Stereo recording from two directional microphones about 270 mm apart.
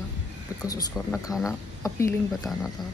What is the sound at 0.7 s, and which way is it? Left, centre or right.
Speech, centre.